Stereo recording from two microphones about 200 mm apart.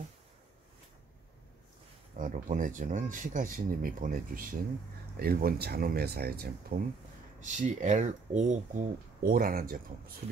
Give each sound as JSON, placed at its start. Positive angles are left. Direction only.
{"t": 2.1, "sound": "speech", "side_deg": -40}
{"t": 7.3, "sound": "speech", "side_deg": -40}